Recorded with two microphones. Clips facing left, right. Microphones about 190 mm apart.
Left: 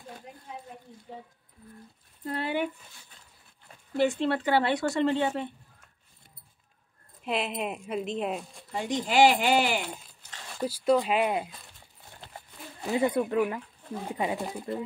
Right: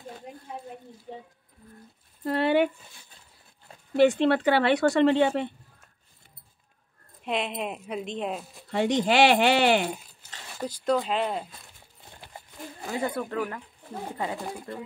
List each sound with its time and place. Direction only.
2.2 s speech: 70° right (ahead or behind)
3.9 s speech: 75° right (ahead or behind)
7.2 s speech: centre (ahead or behind)
8.6 s speech: 70° right (ahead or behind)
10.6 s speech: 5° left (ahead or behind)
12.9 s speech: 15° left (ahead or behind)